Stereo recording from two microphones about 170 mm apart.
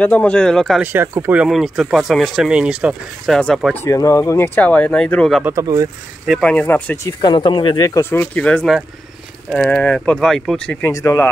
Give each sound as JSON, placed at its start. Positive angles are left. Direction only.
{"t": 0.0, "sound": "speech", "side_deg": 10}
{"t": 0.8, "sound": "speech", "side_deg": -15}
{"t": 3.7, "sound": "speech", "side_deg": 15}
{"t": 5.4, "sound": "speech", "side_deg": -15}
{"t": 6.2, "sound": "speech", "side_deg": 0}
{"t": 7.2, "sound": "speech", "side_deg": 25}
{"t": 10.9, "sound": "speech", "side_deg": 15}